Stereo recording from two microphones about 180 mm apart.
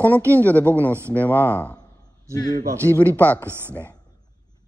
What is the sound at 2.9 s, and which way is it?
Speech, 10° left (ahead or behind).